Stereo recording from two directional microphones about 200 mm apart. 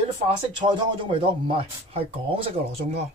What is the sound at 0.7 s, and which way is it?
Speech, 25° right (ahead or behind).